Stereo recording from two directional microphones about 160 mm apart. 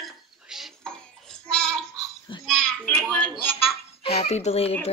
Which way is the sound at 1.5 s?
5° left (ahead or behind).